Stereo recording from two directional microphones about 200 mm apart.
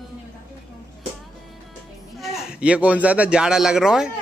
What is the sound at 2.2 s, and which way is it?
A man's voice, centre (ahead or behind).